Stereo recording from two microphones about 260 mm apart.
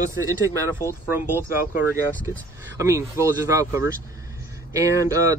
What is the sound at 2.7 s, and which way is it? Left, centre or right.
Speech, centre.